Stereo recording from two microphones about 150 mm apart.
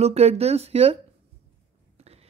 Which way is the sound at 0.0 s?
45° right (ahead or behind).